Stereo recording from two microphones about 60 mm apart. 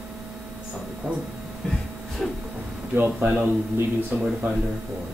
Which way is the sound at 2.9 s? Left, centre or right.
Right.